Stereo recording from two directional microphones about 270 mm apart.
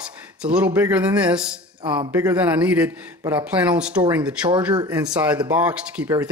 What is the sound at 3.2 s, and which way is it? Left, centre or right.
Speech, centre.